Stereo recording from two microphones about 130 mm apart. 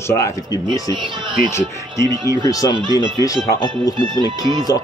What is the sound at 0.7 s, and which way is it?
Speech, 40° right (ahead or behind).